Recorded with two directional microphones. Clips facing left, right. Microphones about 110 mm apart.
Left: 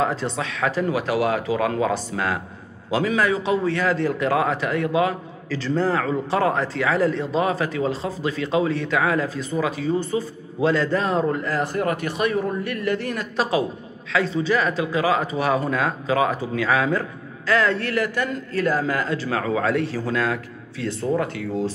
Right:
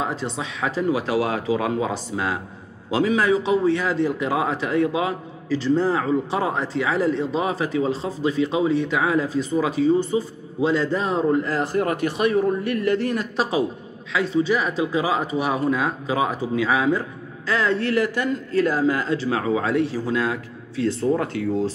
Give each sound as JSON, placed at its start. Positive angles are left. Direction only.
{"t": 0.0, "sound": "a man's voice", "side_deg": -15}
{"t": 11.3, "sound": "a man's voice", "side_deg": -30}
{"t": 14.1, "sound": "a man's voice", "side_deg": -10}
{"t": 20.8, "sound": "speech", "side_deg": -35}